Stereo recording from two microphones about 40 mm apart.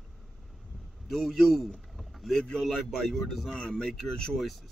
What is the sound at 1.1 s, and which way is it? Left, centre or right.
Speech, centre.